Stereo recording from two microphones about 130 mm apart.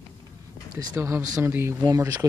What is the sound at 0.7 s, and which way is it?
Speech, 20° right (ahead or behind).